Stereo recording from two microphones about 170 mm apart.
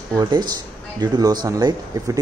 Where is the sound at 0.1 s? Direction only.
25° right (ahead or behind).